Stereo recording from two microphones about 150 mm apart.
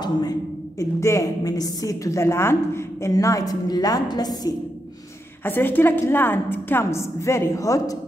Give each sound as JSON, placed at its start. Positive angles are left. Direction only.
{"t": 0.0, "sound": "a woman's voice", "side_deg": 25}
{"t": 5.4, "sound": "a woman's voice", "side_deg": 15}